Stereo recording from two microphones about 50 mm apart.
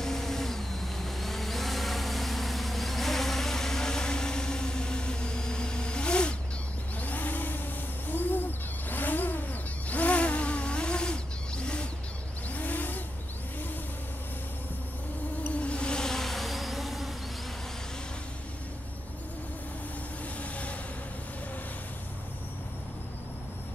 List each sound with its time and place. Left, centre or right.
0.0 s vehicle: centre
7.0 s vehicle: left
8.1 s owl: left; by 11.9 s centre
12.4 s vehicle: left
15.6 s insect: left; by 17.1 s centre